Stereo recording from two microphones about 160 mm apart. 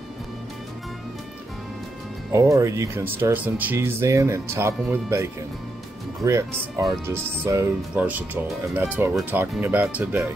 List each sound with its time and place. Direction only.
2.3 s speech: 20° right (ahead or behind)